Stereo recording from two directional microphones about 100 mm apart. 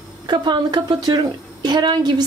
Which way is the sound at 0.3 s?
45° right (ahead or behind).